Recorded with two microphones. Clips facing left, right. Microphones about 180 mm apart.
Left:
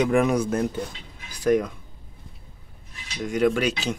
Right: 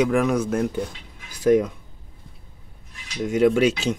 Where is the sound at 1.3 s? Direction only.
25° right (ahead or behind).